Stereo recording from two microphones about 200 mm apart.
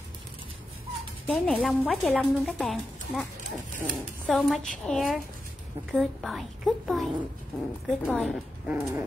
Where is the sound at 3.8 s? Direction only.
5° left (ahead or behind).